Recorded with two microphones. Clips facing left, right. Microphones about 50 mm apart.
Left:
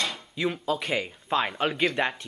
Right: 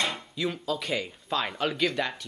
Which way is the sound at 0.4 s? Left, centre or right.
Left.